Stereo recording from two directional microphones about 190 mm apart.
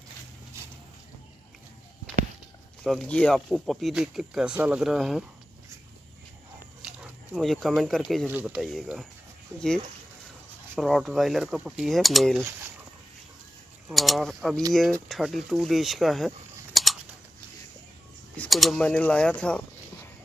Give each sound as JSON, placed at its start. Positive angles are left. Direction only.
{"t": 2.8, "sound": "speech", "side_deg": 0}
{"t": 6.8, "sound": "speech", "side_deg": -5}
{"t": 9.5, "sound": "speech", "side_deg": -15}
{"t": 10.8, "sound": "speech", "side_deg": 0}
{"t": 13.8, "sound": "speech", "side_deg": 0}
{"t": 18.3, "sound": "speech", "side_deg": 5}